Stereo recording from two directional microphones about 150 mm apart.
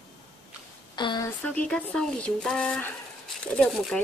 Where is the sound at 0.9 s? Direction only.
30° left (ahead or behind).